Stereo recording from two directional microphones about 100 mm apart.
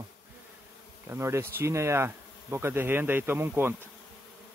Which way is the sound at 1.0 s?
25° right (ahead or behind).